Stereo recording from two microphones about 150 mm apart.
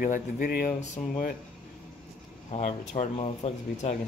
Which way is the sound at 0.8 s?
50° left (ahead or behind).